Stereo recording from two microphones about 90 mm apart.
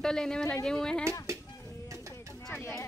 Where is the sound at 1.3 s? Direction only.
35° right (ahead or behind).